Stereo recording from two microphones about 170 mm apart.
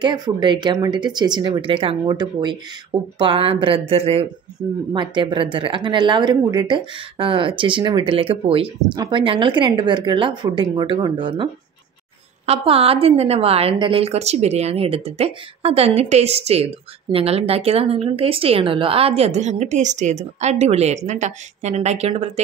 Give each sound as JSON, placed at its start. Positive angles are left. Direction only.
{"t": 0.0, "sound": "a woman's voice", "side_deg": -25}